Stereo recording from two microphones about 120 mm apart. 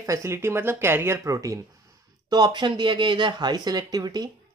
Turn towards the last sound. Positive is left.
turn(degrees=-35)  # may be behind; listen again after turning